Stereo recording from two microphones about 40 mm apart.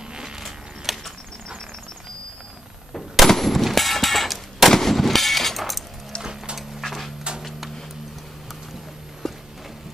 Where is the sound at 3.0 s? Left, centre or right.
Centre.